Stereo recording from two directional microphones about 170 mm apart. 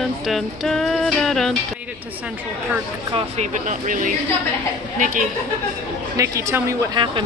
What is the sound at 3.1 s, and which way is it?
Speech, 40° right (ahead or behind).